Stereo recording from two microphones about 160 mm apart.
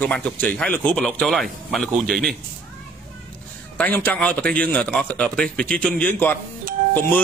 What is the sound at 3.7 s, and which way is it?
A man's voice, 10° left (ahead or behind).